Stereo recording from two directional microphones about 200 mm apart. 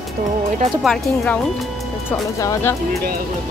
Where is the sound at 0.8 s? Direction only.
Centre (ahead or behind).